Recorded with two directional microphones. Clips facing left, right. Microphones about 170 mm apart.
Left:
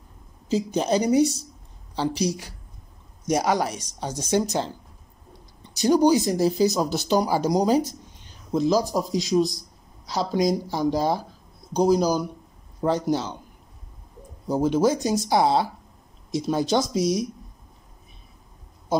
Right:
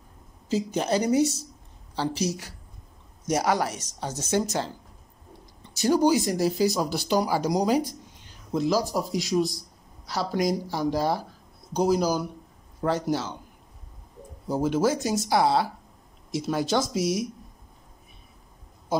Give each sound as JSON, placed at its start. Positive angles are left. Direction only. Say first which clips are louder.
{"t": 0.5, "sound": "speech", "louder": "left 3 dB", "side_deg": 15}
{"t": 5.7, "sound": "speech", "louder": "left 3 dB", "side_deg": 15}
{"t": 14.5, "sound": "speech", "louder": "left 3 dB", "side_deg": 20}